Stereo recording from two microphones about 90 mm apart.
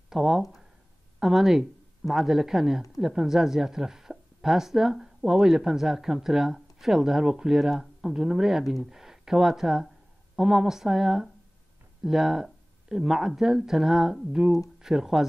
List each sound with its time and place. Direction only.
0.1 s a woman's voice: 5° right (ahead or behind)